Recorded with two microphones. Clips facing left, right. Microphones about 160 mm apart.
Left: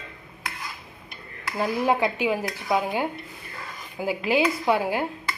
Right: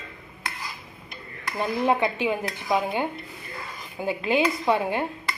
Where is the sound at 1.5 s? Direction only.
5° left (ahead or behind).